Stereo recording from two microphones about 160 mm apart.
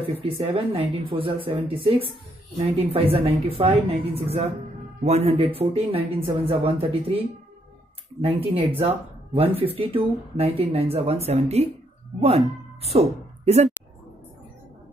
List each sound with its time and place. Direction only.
0.2 s speech: 35° right (ahead or behind)